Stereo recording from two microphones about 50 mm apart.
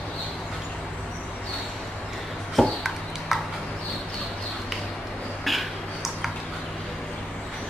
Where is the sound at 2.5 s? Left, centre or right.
Centre.